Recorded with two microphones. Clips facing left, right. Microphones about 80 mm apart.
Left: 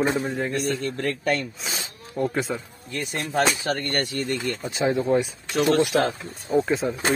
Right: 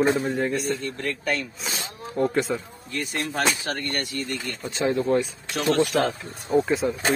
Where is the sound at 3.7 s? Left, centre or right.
Left.